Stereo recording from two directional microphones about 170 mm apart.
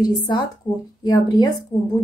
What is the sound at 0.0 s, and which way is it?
A woman's voice, 20° left (ahead or behind).